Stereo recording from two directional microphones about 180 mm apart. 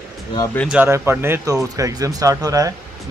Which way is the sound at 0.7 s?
10° right (ahead or behind).